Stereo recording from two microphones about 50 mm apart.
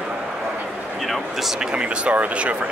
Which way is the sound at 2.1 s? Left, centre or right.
Right.